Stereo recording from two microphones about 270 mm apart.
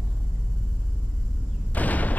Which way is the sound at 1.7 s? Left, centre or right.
Centre.